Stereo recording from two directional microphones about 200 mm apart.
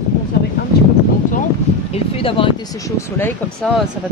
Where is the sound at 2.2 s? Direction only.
25° left (ahead or behind).